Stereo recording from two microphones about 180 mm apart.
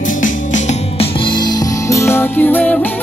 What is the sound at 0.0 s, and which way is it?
Music, 45° left (ahead or behind).